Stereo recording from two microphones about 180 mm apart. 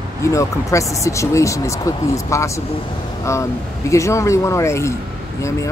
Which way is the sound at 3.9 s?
15° left (ahead or behind).